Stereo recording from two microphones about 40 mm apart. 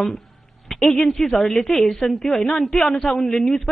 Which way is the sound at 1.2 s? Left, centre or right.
Centre.